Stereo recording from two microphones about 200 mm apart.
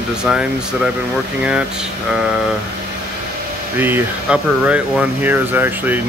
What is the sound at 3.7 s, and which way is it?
Speech, 10° right (ahead or behind).